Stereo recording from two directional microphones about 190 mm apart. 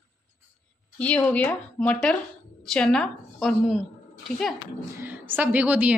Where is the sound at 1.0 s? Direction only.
5° left (ahead or behind).